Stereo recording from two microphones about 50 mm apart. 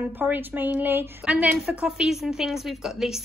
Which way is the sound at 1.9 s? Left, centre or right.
Centre.